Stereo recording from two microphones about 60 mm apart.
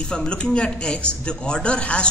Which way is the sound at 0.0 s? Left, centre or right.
Centre.